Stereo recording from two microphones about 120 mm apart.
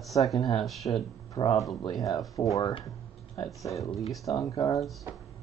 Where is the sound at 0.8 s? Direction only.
40° left (ahead or behind).